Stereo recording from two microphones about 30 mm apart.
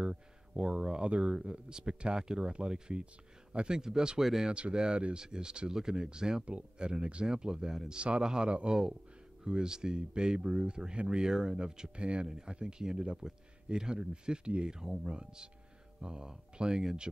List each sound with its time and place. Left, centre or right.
0.6 s speech: right
2.5 s speech: right
4.2 s speech: centre
4.5 s speech: right
6.8 s speech: right
7.2 s speech: right
8.5 s speech: right
9.4 s speech: right
14.7 s speech: right
15.0 s speech: right